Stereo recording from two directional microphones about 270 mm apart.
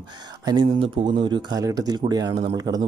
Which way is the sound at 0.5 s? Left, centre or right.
Centre.